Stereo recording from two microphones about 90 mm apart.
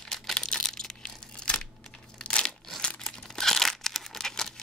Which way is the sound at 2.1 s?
10° left (ahead or behind).